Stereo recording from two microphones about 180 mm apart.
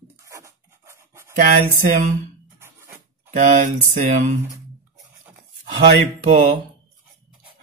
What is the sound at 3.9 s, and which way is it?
Speech, 50° right (ahead or behind).